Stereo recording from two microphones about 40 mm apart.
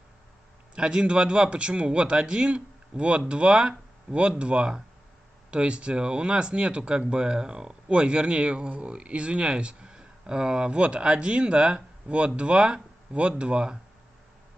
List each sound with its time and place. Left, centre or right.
0.7 s speech: right